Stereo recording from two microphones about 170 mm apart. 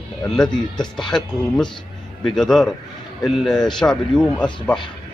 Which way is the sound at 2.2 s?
Centre (ahead or behind).